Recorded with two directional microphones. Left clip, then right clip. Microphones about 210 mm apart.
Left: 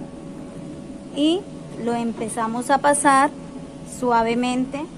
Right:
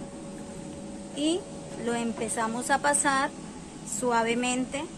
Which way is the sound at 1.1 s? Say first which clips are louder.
Left 8 dB; 20° left (ahead or behind).